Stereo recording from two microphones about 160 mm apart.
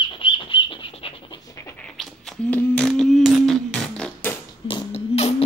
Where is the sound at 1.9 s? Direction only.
5° left (ahead or behind).